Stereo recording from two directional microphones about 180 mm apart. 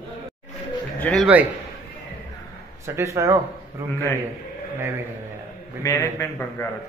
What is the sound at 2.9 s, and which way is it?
Speech, 15° right (ahead or behind).